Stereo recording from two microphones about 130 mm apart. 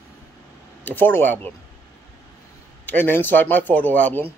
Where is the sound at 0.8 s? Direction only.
15° left (ahead or behind).